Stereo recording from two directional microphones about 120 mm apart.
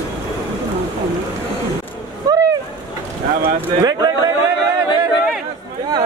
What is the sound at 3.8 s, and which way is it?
Speech, 35° right (ahead or behind).